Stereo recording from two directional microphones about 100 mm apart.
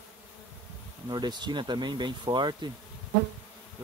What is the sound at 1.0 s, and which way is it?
Speech, 45° right (ahead or behind).